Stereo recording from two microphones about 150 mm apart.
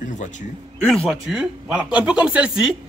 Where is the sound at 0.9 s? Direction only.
Centre (ahead or behind).